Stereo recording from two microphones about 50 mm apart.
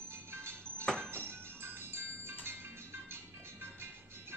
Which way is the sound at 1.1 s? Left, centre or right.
Right.